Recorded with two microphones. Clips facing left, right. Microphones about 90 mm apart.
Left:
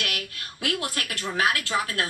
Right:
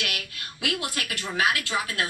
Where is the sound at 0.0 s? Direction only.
40° left (ahead or behind).